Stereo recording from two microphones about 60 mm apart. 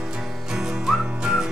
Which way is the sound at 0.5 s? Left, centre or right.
Centre.